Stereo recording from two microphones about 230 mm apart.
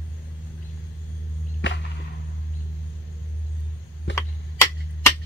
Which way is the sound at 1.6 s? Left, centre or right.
Left.